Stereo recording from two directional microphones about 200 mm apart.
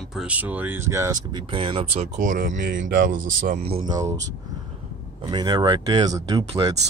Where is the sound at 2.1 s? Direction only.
40° right (ahead or behind); by 4.2 s 20° right (ahead or behind).